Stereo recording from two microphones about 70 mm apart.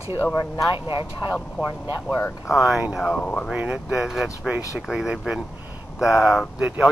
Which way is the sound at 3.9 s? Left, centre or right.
Centre.